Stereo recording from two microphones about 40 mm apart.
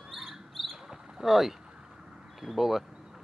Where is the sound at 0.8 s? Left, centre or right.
Centre.